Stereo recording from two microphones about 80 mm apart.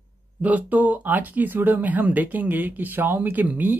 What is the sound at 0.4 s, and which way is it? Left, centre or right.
Speech, centre.